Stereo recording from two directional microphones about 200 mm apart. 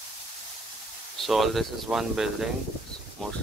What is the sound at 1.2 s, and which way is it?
Speech, centre (ahead or behind).